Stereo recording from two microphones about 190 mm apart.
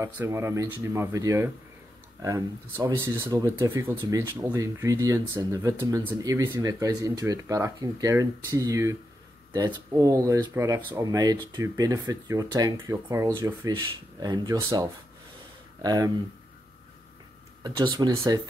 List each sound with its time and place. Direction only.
0.0 s speech: 15° right (ahead or behind)
17.6 s speech: 20° right (ahead or behind)